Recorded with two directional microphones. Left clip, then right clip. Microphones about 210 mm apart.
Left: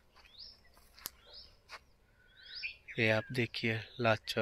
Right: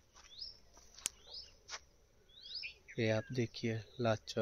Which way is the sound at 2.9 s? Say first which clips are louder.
Left 5 dB; centre (ahead or behind).